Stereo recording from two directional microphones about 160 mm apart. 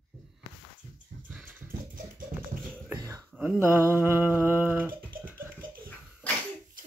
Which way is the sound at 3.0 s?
20° right (ahead or behind).